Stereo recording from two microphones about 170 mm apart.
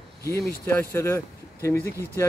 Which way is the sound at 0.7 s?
10° left (ahead or behind).